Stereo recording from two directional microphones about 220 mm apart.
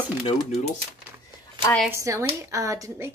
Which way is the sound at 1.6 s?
5° left (ahead or behind).